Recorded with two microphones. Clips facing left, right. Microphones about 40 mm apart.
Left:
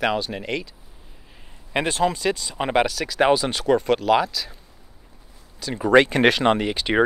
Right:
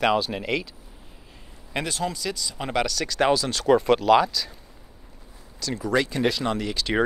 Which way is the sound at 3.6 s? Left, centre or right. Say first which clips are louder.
Right 3 dB; centre.